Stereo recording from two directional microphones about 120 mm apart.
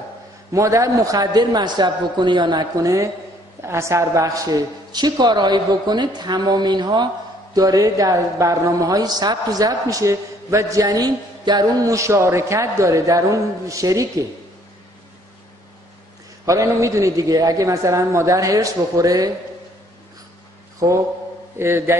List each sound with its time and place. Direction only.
0.5 s a woman's voice: 25° right (ahead or behind)
16.4 s a woman's voice: 25° right (ahead or behind)
21.5 s a woman's voice: 20° right (ahead or behind)